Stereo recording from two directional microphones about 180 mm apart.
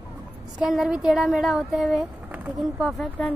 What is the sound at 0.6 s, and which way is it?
Speech, 5° right (ahead or behind).